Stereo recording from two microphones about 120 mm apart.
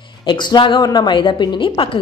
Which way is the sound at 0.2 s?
40° left (ahead or behind).